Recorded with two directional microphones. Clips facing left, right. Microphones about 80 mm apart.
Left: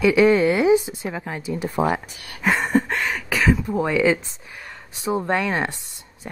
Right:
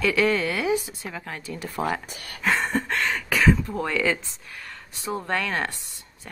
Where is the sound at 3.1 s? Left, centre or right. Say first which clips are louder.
Right 2 dB; centre.